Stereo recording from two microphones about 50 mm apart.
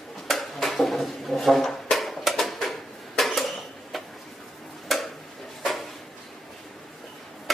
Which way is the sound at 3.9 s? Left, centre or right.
Centre.